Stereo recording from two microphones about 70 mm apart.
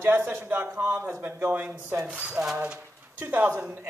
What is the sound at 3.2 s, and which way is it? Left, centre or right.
Speech, right.